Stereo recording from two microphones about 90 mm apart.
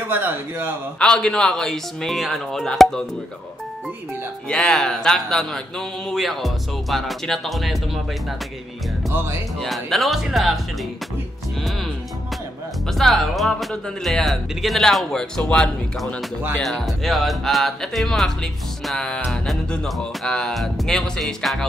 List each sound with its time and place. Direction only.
0.1 s speech: 25° right (ahead or behind)
0.9 s speech: 10° left (ahead or behind)
4.5 s speech: 10° left (ahead or behind)
9.1 s speech: 30° right (ahead or behind)
9.6 s speech: centre (ahead or behind)
12.9 s speech: centre (ahead or behind)